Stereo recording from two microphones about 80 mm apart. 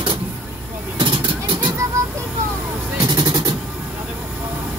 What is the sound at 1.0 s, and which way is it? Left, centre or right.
Vehicle, right.